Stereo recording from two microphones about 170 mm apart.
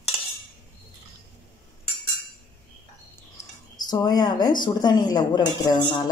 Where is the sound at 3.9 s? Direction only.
25° left (ahead or behind).